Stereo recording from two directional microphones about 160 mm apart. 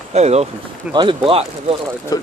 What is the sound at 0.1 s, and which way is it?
Speech, 40° right (ahead or behind).